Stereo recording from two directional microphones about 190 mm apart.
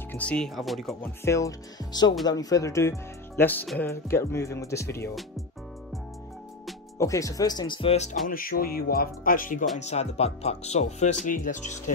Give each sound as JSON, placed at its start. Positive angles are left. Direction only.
{"t": 0.1, "sound": "speech", "side_deg": 5}
{"t": 1.2, "sound": "speech", "side_deg": 15}
{"t": 7.0, "sound": "speech", "side_deg": 15}
{"t": 8.3, "sound": "speech", "side_deg": 50}